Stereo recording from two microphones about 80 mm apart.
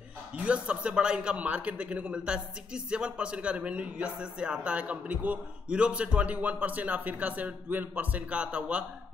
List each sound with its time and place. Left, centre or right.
0.4 s a man's voice: centre